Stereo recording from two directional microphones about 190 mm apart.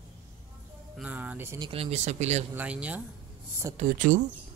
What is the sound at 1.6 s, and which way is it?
Speech, 30° right (ahead or behind).